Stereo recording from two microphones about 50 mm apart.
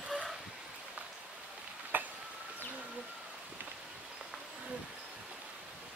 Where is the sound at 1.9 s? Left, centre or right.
Right.